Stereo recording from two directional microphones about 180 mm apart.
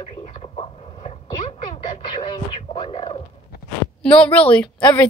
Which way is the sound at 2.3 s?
25° left (ahead or behind).